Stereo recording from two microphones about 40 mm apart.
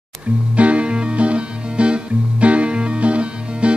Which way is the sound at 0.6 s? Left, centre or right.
Right.